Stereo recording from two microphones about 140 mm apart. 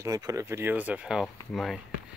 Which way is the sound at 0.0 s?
25° right (ahead or behind).